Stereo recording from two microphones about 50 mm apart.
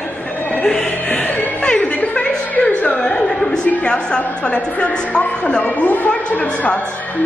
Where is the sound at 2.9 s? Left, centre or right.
Centre.